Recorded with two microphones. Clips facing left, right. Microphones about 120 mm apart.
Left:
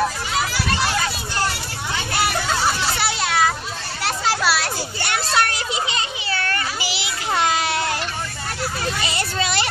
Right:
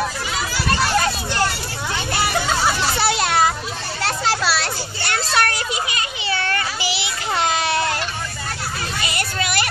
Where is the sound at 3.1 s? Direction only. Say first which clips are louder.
Right 3 dB; 50° right (ahead or behind).